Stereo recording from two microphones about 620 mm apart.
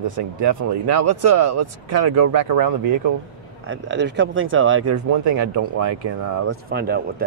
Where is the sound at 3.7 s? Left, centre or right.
Centre.